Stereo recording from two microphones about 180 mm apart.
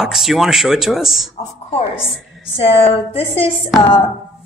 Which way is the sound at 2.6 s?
30° left (ahead or behind).